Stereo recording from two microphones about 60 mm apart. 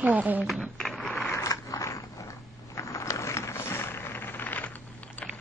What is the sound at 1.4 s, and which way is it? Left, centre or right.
Mechanisms, left.